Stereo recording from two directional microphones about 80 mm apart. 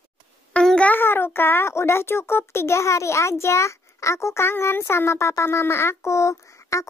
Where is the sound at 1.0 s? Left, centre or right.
Left.